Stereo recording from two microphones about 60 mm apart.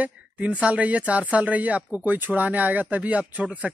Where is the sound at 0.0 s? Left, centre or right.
Right.